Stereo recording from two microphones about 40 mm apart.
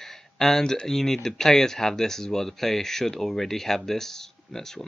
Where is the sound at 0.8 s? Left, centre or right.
Centre.